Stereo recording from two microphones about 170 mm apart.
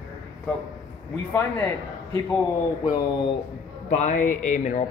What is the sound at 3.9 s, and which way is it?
Speech, 45° left (ahead or behind).